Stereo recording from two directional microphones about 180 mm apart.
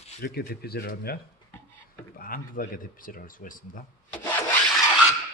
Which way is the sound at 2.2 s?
55° left (ahead or behind).